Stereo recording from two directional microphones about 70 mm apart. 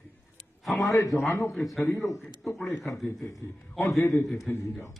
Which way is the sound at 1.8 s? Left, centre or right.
Left.